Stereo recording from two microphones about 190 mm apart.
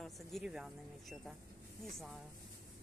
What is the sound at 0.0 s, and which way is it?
Speech, centre (ahead or behind).